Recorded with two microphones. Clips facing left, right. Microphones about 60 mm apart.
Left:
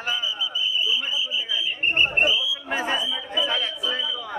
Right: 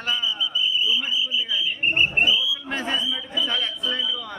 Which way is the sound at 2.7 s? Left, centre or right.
Centre.